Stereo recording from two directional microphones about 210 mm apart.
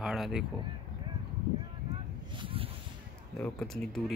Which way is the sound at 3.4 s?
Centre (ahead or behind).